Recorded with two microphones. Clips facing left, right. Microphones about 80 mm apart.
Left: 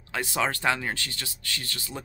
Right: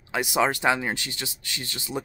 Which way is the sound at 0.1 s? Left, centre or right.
Centre.